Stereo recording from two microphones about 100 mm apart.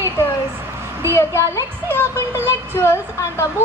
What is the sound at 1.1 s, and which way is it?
Speech, 25° left (ahead or behind).